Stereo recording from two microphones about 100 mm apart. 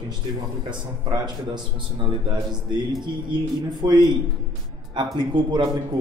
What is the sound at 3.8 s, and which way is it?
Speech, 45° right (ahead or behind).